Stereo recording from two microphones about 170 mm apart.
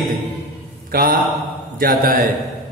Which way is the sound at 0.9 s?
55° right (ahead or behind).